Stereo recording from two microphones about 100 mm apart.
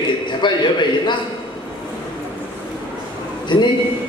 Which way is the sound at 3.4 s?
50° left (ahead or behind).